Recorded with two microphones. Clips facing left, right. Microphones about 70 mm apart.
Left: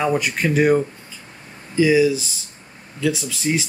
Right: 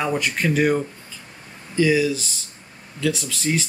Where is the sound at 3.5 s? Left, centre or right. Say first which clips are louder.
Left 2 dB; centre.